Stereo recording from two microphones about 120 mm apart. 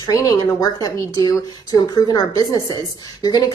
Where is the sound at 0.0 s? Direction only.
30° left (ahead or behind).